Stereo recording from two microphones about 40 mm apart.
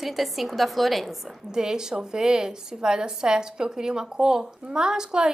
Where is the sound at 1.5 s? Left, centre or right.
Centre.